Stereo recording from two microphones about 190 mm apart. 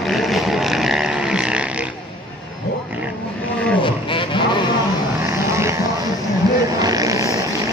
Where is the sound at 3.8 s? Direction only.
25° left (ahead or behind).